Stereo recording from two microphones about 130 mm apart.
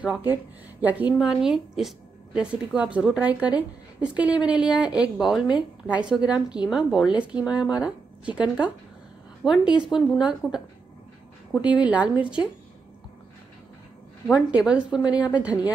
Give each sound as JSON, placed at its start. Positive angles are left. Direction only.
{"t": 0.0, "sound": "a woman's voice", "side_deg": -10}
{"t": 11.6, "sound": "a woman's voice", "side_deg": 35}
{"t": 11.9, "sound": "a woman's voice", "side_deg": -10}
{"t": 14.5, "sound": "a woman's voice", "side_deg": -10}